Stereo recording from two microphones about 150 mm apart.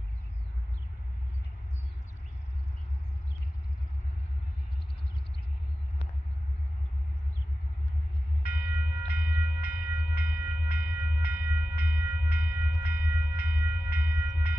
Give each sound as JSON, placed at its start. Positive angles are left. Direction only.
{"t": 8.4, "sound": "train", "side_deg": 90}